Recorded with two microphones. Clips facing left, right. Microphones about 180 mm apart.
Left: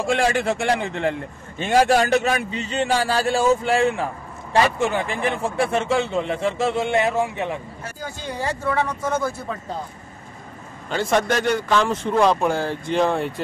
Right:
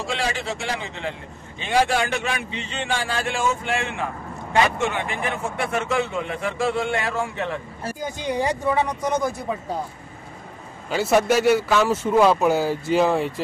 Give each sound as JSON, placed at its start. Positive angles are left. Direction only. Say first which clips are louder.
{"t": 0.0, "sound": "a man's voice", "louder": "left 6 dB", "side_deg": 50}
{"t": 1.6, "sound": "a man's voice", "louder": "left 4 dB", "side_deg": 45}
{"t": 8.0, "sound": "a man's voice", "louder": "right 4 dB", "side_deg": -15}
{"t": 10.9, "sound": "a man's voice", "louder": "right 2 dB", "side_deg": -5}